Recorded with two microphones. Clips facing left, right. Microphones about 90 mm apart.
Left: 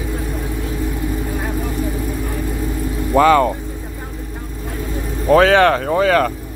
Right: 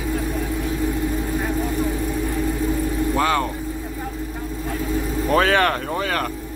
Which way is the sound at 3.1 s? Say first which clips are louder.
Left 11 dB; 45° left (ahead or behind).